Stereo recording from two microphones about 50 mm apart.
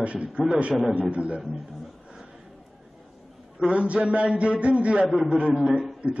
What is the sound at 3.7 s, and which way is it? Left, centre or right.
A man's voice, right.